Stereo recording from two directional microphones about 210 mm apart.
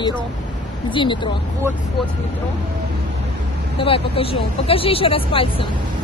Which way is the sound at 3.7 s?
25° left (ahead or behind).